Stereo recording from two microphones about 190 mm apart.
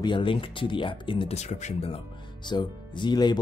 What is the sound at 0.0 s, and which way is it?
Speech, 25° left (ahead or behind).